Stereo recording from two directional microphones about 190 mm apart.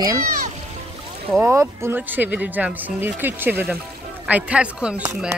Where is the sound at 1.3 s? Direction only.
10° right (ahead or behind).